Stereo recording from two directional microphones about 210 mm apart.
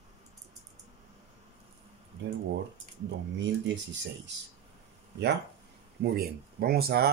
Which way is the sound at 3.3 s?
60° right (ahead or behind).